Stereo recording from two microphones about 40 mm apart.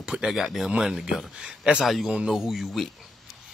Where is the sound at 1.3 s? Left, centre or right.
Right.